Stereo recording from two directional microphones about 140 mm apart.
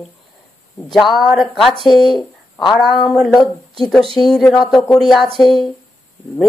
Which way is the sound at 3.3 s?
30° left (ahead or behind).